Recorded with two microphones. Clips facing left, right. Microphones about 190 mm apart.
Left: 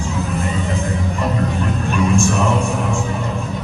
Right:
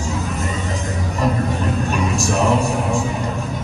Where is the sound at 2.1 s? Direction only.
35° right (ahead or behind).